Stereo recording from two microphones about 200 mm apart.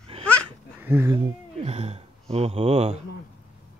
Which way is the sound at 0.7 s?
10° right (ahead or behind).